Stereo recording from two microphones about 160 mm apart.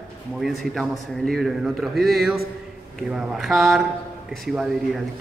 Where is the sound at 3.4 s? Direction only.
Centre (ahead or behind).